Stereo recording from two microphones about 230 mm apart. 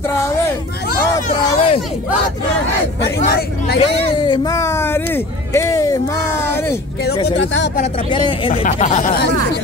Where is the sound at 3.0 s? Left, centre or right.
Left.